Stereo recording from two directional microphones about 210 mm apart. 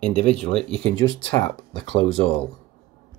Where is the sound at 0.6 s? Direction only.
5° left (ahead or behind).